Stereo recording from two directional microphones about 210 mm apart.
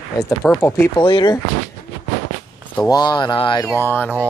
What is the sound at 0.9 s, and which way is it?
Speech, 20° left (ahead or behind).